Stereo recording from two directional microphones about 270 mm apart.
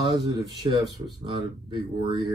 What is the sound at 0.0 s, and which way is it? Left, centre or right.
Speech, centre.